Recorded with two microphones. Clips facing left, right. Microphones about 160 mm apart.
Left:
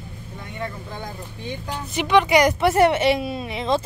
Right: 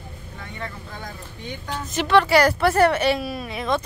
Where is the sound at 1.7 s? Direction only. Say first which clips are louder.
Even; 15° left (ahead or behind).